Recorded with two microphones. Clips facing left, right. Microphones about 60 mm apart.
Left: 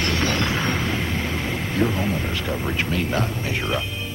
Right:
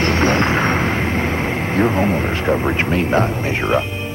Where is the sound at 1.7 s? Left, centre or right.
Right.